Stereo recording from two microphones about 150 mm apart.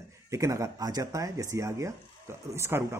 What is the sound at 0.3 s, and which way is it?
Speech, 20° right (ahead or behind).